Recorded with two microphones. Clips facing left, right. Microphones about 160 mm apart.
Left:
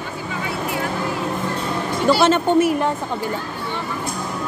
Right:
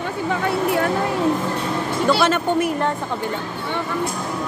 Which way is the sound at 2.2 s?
25° left (ahead or behind).